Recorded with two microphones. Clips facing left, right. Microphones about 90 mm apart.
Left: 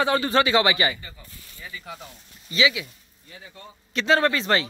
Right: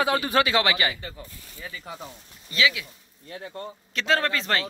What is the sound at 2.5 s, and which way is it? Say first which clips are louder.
Speech: left 2 dB; 5° left (ahead or behind).